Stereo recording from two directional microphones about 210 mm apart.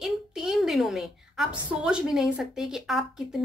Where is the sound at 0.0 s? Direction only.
Centre (ahead or behind).